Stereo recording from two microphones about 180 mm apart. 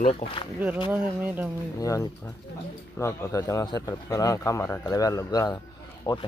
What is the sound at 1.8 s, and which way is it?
A man's voice, 20° left (ahead or behind).